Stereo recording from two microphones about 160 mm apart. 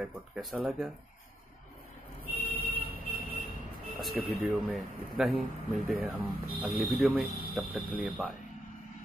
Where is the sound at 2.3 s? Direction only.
65° left (ahead or behind).